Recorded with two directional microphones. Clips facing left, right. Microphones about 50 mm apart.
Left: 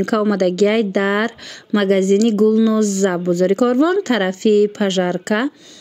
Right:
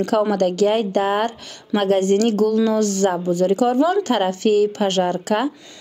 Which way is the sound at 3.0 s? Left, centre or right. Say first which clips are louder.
Left 2 dB; left.